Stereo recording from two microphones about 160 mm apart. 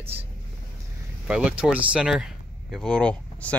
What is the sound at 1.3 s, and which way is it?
Speech, 5° right (ahead or behind).